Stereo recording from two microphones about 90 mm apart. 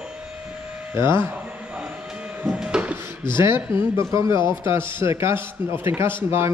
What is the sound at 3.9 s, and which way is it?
A man's voice, 35° right (ahead or behind).